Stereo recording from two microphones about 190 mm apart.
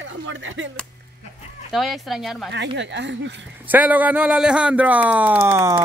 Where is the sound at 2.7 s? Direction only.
70° right (ahead or behind).